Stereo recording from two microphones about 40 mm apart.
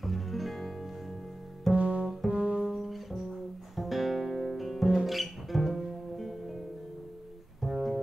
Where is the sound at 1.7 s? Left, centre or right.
Right.